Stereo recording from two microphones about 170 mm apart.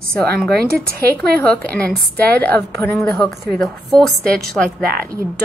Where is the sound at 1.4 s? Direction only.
10° left (ahead or behind).